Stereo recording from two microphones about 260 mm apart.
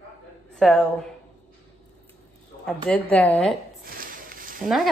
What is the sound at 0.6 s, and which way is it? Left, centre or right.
Speech, centre.